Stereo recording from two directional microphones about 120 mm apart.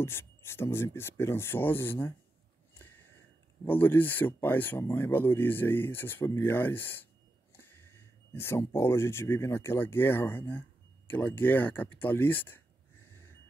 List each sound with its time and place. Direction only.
0.0 s speech: 20° left (ahead or behind)
2.7 s a sound: 15° left (ahead or behind)
3.6 s speech: 15° left (ahead or behind)